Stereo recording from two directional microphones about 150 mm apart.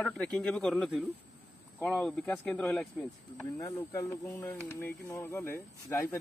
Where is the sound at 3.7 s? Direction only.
25° left (ahead or behind).